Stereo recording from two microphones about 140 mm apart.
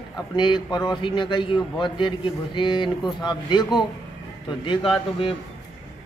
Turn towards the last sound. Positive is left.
turn(degrees=40)  # may be behind; listen again after turning